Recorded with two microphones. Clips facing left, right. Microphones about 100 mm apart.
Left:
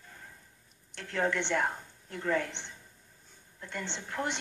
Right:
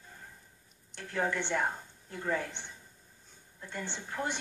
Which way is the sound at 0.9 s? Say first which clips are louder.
Left 2 dB; 10° right (ahead or behind).